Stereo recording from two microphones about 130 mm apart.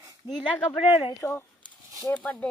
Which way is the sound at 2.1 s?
10° left (ahead or behind).